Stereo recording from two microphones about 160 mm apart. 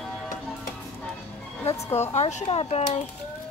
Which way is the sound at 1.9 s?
40° left (ahead or behind).